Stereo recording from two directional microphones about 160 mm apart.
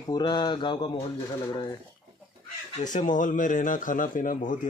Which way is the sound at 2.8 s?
50° left (ahead or behind).